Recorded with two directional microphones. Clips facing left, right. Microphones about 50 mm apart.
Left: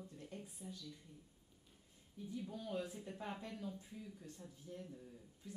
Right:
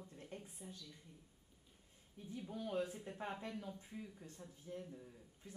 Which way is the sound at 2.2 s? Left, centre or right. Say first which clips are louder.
Even; right.